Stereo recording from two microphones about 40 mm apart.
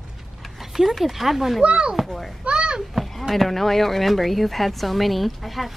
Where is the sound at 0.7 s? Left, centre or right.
Centre.